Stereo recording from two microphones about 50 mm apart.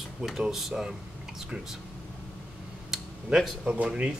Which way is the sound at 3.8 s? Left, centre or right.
Right.